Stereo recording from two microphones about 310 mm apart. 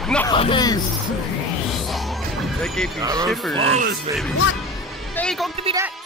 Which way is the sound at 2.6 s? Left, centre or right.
Centre.